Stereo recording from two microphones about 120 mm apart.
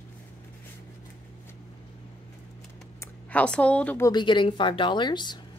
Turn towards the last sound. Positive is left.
turn(degrees=40)  # may be behind; listen again after turning